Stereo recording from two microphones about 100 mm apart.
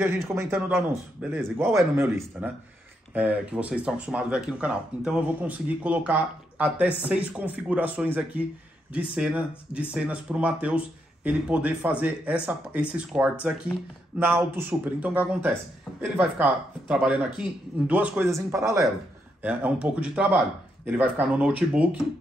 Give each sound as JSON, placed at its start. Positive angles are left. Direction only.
{"t": 0.3, "sound": "speech", "side_deg": -25}
{"t": 3.2, "sound": "speech", "side_deg": -15}
{"t": 14.2, "sound": "speech", "side_deg": -20}
{"t": 18.2, "sound": "speech", "side_deg": -30}
{"t": 19.4, "sound": "speech", "side_deg": -15}